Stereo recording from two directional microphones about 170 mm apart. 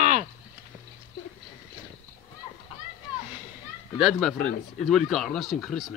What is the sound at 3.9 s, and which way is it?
A man's voice, centre (ahead or behind).